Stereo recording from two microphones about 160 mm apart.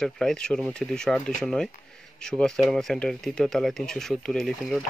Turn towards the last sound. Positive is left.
turn(degrees=0)  # may be behind; listen again after turning